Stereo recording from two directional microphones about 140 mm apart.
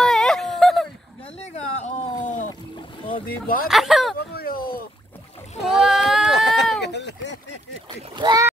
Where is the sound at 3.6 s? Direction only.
Centre (ahead or behind).